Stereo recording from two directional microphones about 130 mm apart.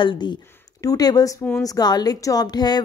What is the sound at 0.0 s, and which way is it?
Speech, 40° left (ahead or behind).